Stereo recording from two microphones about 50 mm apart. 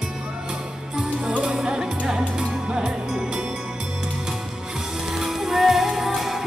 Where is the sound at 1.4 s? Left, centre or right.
Centre.